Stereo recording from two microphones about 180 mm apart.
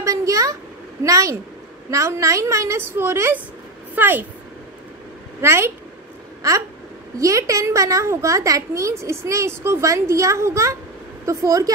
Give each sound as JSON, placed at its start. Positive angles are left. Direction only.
{"t": 0.0, "sound": "a sound", "side_deg": -20}
{"t": 1.0, "sound": "a woman's voice", "side_deg": -20}
{"t": 5.4, "sound": "a woman's voice", "side_deg": -15}
{"t": 7.2, "sound": "a woman's voice", "side_deg": -20}